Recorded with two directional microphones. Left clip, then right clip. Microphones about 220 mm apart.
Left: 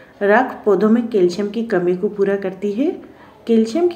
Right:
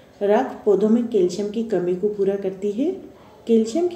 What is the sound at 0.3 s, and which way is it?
Speech, 55° left (ahead or behind).